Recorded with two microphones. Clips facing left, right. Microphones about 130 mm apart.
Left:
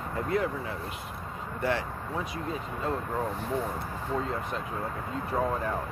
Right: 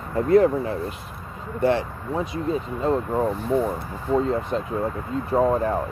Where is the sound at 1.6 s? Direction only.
25° right (ahead or behind).